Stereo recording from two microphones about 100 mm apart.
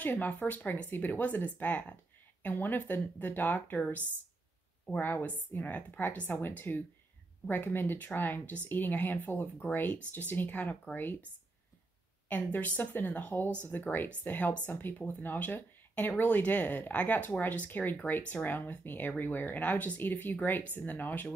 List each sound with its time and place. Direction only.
0.0 s speech: 15° left (ahead or behind)
12.3 s speech: 15° left (ahead or behind)